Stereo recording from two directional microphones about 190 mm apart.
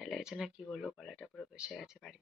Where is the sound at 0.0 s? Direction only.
Centre (ahead or behind).